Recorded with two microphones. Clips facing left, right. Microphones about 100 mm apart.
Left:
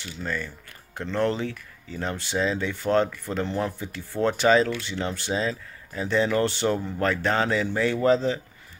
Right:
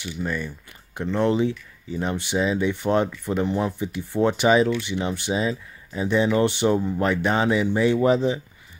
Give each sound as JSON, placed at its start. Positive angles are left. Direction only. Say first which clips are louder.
{"t": 0.0, "sound": "speech", "louder": "right 3 dB", "side_deg": -15}